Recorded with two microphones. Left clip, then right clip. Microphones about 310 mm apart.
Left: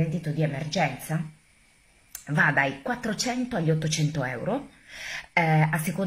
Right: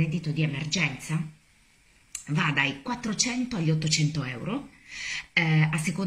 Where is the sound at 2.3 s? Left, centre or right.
Centre.